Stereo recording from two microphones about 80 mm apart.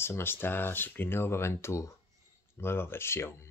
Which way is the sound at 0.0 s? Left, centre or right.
Left.